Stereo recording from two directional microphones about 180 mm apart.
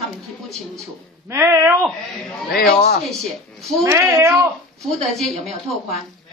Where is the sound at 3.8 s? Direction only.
15° right (ahead or behind).